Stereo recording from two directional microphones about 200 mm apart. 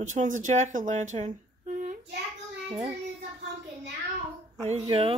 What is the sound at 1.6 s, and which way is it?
Child singing, 40° right (ahead or behind).